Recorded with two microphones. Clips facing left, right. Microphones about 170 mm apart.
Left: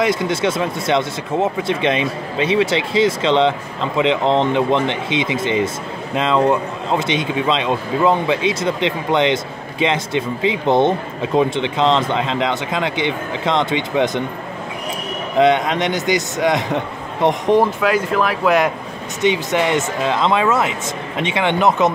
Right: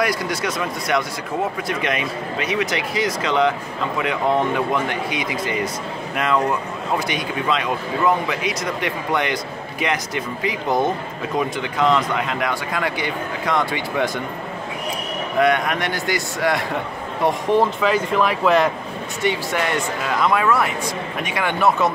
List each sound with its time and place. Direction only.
0.0 s speech: 25° left (ahead or behind)
15.3 s speech: 20° left (ahead or behind)
17.7 s speech: 5° left (ahead or behind)
19.2 s speech: 20° left (ahead or behind)